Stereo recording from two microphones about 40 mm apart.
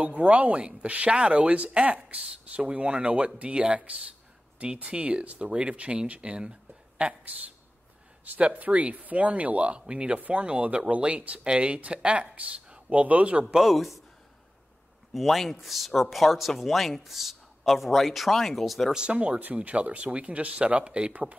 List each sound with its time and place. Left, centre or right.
0.0 s speech: right
5.5 s speech: right
8.4 s speech: right
13.6 s speech: centre
15.1 s speech: centre
19.0 s speech: right